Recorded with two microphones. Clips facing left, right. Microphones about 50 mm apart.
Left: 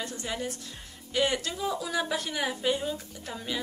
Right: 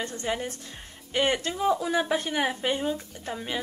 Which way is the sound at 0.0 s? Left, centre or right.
Right.